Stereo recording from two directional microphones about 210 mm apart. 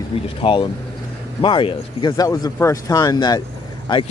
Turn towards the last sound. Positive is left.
turn(degrees=20)  # may be behind; listen again after turning